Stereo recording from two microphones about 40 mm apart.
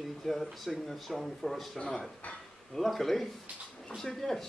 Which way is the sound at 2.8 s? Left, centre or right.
Centre.